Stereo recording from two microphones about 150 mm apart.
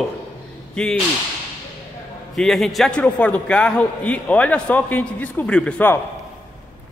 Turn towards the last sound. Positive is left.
turn(degrees=10)  # may be behind; listen again after turning